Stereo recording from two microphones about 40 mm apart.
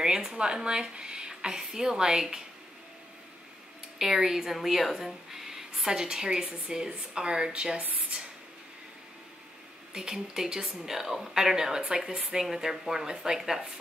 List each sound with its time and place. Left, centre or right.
0.0 s a woman's voice: centre
4.0 s speech: centre; by 7.8 s right
9.9 s speech: centre